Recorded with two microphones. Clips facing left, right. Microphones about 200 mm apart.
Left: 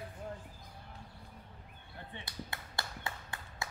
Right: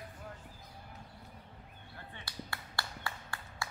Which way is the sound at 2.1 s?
20° left (ahead or behind).